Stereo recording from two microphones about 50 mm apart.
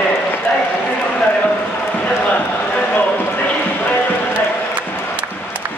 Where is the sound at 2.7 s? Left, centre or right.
Left.